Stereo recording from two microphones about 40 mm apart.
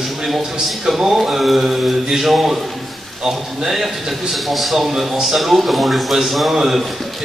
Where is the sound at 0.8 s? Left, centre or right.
Centre.